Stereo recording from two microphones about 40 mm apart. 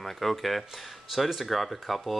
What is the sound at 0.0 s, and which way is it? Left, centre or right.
Speech, centre.